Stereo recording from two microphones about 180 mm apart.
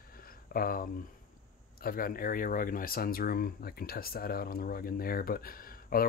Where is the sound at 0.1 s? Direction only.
55° left (ahead or behind).